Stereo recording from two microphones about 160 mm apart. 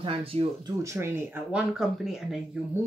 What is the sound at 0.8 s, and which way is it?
Speech, 15° right (ahead or behind).